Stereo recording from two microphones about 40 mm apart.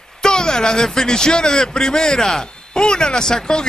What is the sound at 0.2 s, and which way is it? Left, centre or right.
Speech, centre.